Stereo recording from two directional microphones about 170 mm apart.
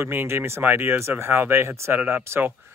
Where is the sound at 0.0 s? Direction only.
15° right (ahead or behind).